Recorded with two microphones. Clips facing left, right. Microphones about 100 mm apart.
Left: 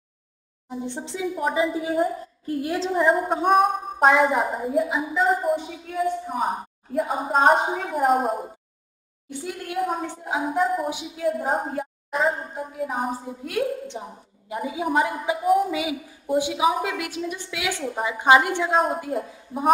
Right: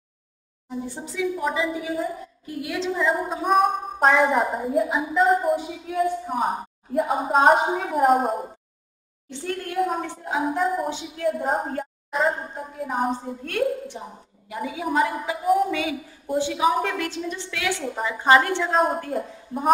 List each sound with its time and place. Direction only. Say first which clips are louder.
1.1 s a woman's voice: left 1 dB; 25° left (ahead or behind)
3.4 s a woman's voice: even; centre (ahead or behind)
9.3 s a woman's voice: right 2 dB; 10° left (ahead or behind)
9.8 s a woman's voice: right 1 dB; centre (ahead or behind)
10.9 s a woman's voice: even; 10° left (ahead or behind)
11.2 s a woman's voice: even; centre (ahead or behind)
14.0 s a woman's voice: left 2 dB; 20° left (ahead or behind)
15.4 s a woman's voice: even; centre (ahead or behind)
15.7 s a woman's voice: even; 15° left (ahead or behind)